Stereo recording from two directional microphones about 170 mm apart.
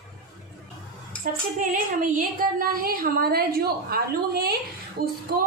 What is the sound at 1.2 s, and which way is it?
A woman's voice, 55° right (ahead or behind).